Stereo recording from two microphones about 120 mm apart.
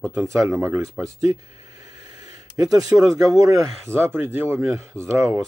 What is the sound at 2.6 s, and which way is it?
Speech, 30° right (ahead or behind).